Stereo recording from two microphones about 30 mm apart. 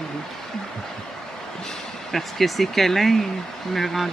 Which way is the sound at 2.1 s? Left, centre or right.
Centre.